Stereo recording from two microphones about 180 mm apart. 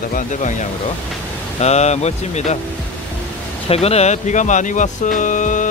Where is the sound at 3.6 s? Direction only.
35° left (ahead or behind).